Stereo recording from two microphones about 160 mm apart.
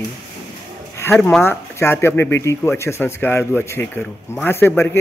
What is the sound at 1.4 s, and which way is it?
Speech, 15° left (ahead or behind).